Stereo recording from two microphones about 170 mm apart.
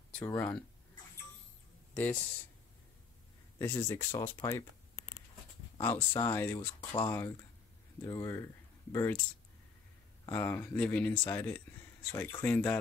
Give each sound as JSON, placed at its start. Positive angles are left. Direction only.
{"t": 0.2, "sound": "speech", "side_deg": 20}
{"t": 3.5, "sound": "speech", "side_deg": 15}
{"t": 5.8, "sound": "speech", "side_deg": 15}
{"t": 6.8, "sound": "speech", "side_deg": 25}
{"t": 10.2, "sound": "speech", "side_deg": 15}